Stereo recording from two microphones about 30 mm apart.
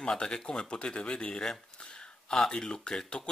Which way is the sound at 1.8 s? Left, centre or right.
Left.